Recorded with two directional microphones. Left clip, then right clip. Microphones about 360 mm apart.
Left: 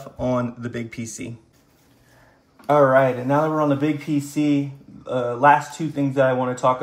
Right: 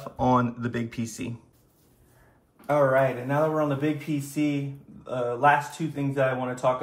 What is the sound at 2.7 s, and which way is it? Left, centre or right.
Speech, left.